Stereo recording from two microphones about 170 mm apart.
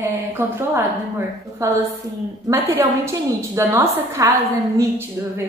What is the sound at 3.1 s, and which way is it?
A woman's voice, 15° right (ahead or behind).